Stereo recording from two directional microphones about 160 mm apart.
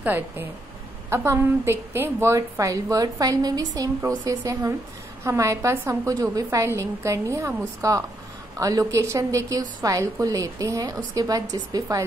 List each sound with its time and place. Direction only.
0.0 s a woman's voice: 10° right (ahead or behind)